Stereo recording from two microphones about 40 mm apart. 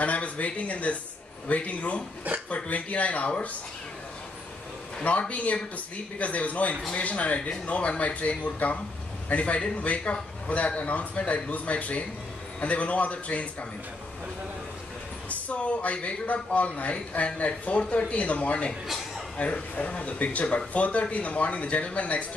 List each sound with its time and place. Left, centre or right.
0.0 s speech: left
5.3 s speech: left
15.2 s speech: left